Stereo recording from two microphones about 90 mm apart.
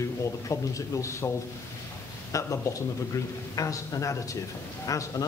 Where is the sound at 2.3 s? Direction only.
35° left (ahead or behind).